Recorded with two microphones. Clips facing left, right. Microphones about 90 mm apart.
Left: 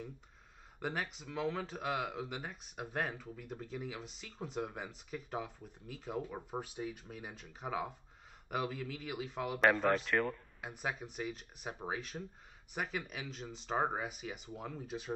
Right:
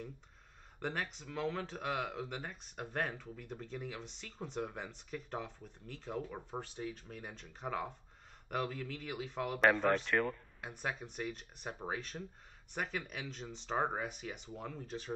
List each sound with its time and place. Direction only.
0.7 s speech: 5° left (ahead or behind)